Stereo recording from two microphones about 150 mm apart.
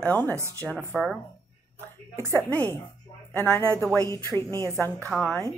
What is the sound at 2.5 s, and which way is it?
A woman's voice, 10° left (ahead or behind).